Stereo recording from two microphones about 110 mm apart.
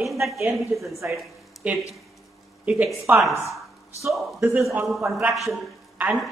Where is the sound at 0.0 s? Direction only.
Centre (ahead or behind).